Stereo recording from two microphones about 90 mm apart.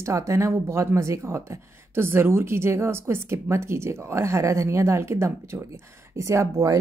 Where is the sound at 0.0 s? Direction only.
35° right (ahead or behind).